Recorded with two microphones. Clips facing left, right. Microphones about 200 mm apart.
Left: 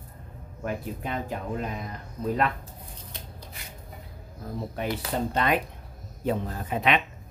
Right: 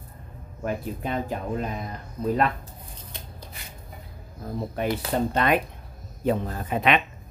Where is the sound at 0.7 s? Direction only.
35° right (ahead or behind).